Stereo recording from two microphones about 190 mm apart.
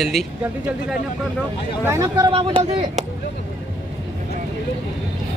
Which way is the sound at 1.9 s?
20° right (ahead or behind).